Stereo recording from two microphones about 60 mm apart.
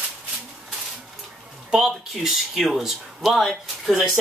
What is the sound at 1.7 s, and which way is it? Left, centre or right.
Speech, centre.